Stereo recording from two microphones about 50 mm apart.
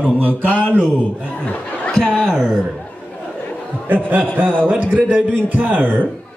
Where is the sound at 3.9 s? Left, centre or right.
Right.